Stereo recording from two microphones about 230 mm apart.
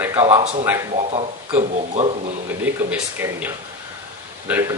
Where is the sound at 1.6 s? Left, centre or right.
Right.